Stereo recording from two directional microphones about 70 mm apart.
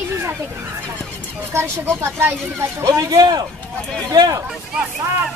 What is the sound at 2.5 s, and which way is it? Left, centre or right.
Speech, right.